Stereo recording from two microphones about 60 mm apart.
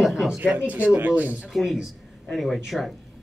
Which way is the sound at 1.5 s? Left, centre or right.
Centre.